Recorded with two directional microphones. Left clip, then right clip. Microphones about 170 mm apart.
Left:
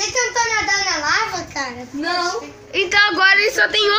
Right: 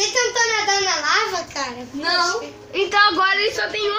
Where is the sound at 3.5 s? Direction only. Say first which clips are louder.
Left 7 dB; 35° left (ahead or behind).